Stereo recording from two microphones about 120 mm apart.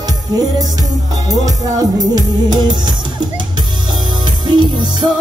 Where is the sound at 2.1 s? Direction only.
35° right (ahead or behind).